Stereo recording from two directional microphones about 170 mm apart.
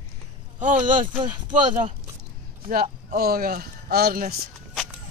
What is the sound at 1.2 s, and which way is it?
Speech, 25° right (ahead or behind).